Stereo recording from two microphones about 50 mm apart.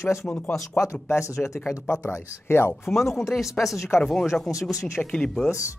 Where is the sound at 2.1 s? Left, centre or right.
Left.